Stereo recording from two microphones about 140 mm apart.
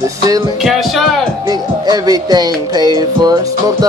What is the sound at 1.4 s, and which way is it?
Speech, 30° right (ahead or behind).